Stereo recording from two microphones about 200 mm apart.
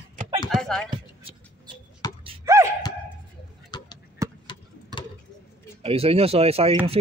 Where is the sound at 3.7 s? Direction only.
20° left (ahead or behind).